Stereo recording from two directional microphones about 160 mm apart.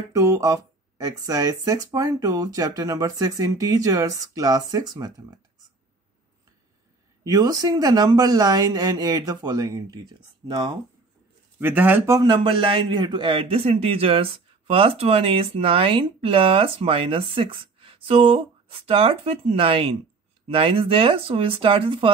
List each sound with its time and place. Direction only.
0.1 s speech: 20° right (ahead or behind)
7.2 s speech: 25° right (ahead or behind)
11.6 s speech: 10° right (ahead or behind)
12.2 s a man's voice: 30° right (ahead or behind)